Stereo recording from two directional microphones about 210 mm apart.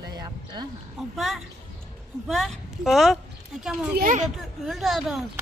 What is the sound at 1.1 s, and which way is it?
A woman's voice, centre (ahead or behind).